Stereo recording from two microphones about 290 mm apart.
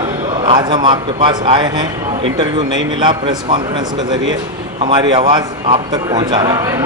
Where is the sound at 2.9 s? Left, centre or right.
Centre.